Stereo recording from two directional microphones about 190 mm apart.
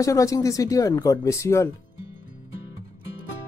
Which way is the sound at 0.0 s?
15° left (ahead or behind).